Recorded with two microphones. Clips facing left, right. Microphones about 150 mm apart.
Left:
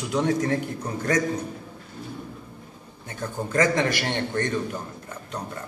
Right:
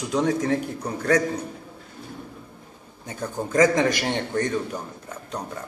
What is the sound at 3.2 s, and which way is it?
A man's voice, centre (ahead or behind).